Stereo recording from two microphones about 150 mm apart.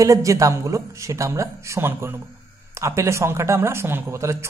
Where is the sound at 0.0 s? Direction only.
20° right (ahead or behind).